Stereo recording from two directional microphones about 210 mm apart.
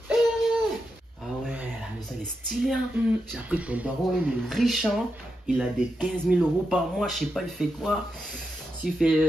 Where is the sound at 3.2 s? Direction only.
5° right (ahead or behind).